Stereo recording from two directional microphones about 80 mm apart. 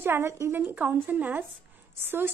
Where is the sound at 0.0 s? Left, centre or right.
Right.